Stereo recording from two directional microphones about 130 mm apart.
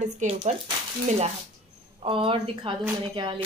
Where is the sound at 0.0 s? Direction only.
55° right (ahead or behind).